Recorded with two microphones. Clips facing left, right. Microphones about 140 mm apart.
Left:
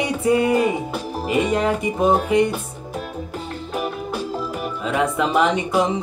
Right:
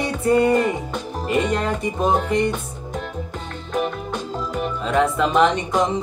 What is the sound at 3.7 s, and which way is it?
Speech, 5° left (ahead or behind).